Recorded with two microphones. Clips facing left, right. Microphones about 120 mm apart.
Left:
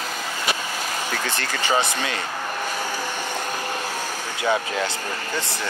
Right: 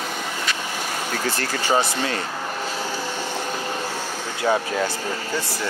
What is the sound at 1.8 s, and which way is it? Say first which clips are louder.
Speech: right 1 dB; 15° left (ahead or behind).